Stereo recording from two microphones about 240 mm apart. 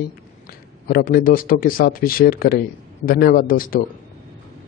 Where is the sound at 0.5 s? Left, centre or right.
Left.